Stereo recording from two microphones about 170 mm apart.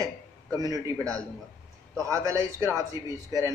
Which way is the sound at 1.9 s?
15° right (ahead or behind).